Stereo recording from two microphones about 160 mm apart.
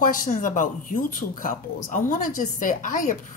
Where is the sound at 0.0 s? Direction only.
60° left (ahead or behind).